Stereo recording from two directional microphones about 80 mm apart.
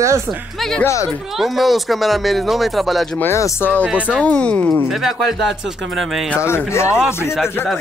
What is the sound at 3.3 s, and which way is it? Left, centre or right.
Speech, left.